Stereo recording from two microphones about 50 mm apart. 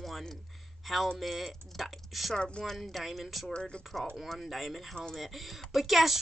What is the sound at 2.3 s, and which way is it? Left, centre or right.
Speech, centre.